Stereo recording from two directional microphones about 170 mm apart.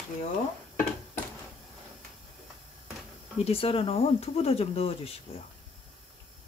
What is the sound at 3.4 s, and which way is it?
Speech, 35° left (ahead or behind).